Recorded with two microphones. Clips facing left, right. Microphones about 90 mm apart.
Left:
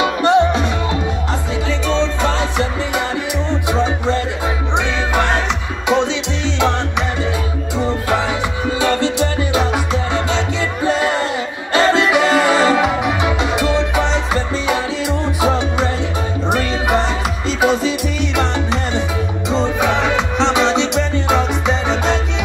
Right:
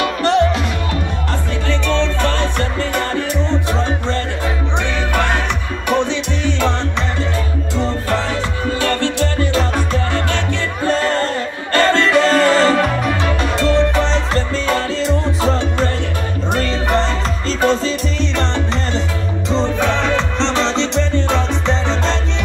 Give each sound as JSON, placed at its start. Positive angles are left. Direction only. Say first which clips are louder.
{"t": 0.0, "sound": "music", "louder": "left 2 dB", "side_deg": 20}
{"t": 1.7, "sound": "music", "louder": "even", "side_deg": 15}
{"t": 7.7, "sound": "music", "louder": "left 1 dB", "side_deg": 15}
{"t": 19.5, "sound": "music", "louder": "even", "side_deg": 15}